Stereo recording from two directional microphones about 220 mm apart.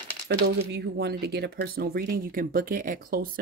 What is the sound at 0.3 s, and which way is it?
Speech, 50° right (ahead or behind).